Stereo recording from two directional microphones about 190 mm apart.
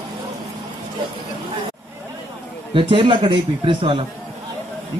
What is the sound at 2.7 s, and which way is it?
A man's voice, 25° right (ahead or behind).